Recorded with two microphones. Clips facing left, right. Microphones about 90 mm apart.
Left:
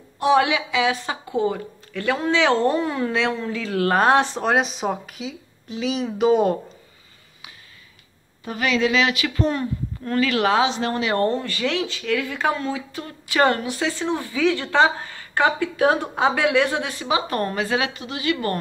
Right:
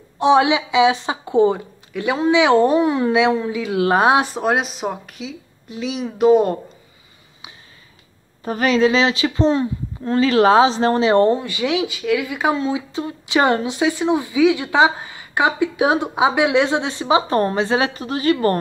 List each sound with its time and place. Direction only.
0.2 s a woman's voice: 20° right (ahead or behind); by 6.5 s centre (ahead or behind)
8.5 s speech: 40° right (ahead or behind)